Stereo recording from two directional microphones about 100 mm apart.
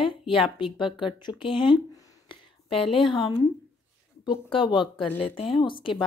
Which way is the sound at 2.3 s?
65° left (ahead or behind).